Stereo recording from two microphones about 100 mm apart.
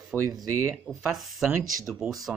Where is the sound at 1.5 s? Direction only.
30° right (ahead or behind).